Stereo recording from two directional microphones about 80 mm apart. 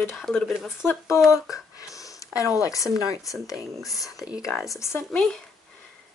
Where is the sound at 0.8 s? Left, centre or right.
Left.